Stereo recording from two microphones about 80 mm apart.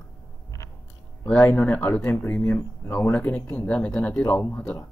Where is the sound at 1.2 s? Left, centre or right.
Centre.